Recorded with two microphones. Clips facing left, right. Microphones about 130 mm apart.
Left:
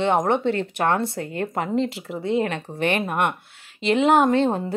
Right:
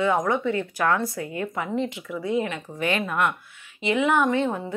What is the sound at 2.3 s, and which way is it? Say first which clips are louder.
Speech: left 3 dB; 60° left (ahead or behind).